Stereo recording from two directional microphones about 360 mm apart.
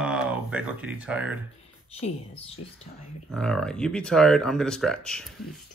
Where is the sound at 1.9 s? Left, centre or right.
Centre.